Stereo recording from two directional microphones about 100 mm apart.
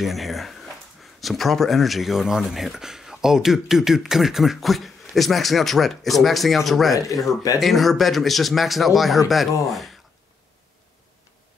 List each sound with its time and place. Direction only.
0.0 s a sound: centre (ahead or behind)
1.2 s speech: centre (ahead or behind)
6.9 s speech: 35° left (ahead or behind)
7.6 s speech: centre (ahead or behind)